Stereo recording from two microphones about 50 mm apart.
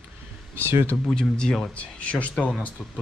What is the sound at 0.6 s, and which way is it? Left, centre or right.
Speech, right.